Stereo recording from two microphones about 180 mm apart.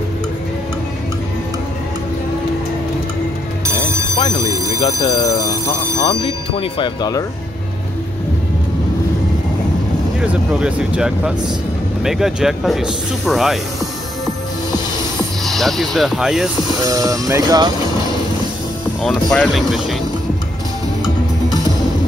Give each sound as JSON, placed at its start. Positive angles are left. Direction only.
{"t": 4.7, "sound": "speech", "side_deg": 20}
{"t": 10.2, "sound": "speech", "side_deg": -5}
{"t": 15.4, "sound": "speech", "side_deg": 0}
{"t": 16.8, "sound": "speech", "side_deg": -20}
{"t": 19.3, "sound": "speech", "side_deg": 0}